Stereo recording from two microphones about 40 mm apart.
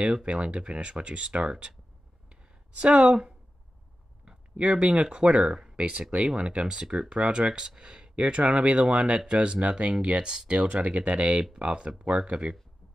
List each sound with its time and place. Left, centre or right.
0.0 s speech: right
2.8 s speech: right
4.6 s speech: right
8.2 s speech: right
10.3 s speech: right
11.5 s speech: right